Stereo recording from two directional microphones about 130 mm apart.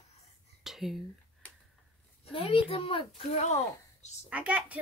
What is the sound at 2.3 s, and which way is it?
A woman's voice, 45° left (ahead or behind).